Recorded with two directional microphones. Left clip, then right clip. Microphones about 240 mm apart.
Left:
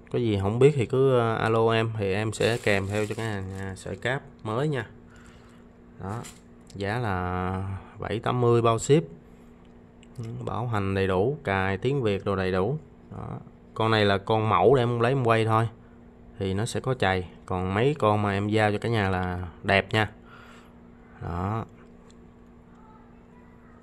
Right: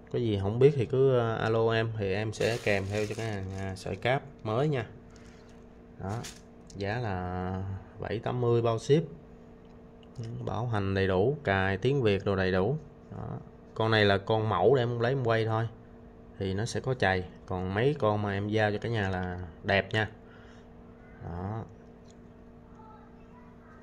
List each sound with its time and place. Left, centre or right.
0.1 s speech: centre
5.9 s speech: centre
10.1 s speech: centre
21.2 s speech: centre